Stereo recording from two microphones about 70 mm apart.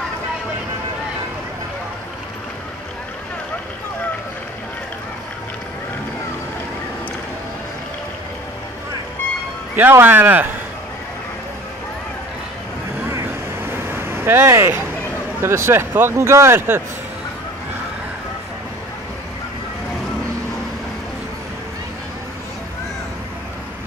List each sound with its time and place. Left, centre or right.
9.8 s speech: right
13.1 s vehicle: right
15.4 s speech: right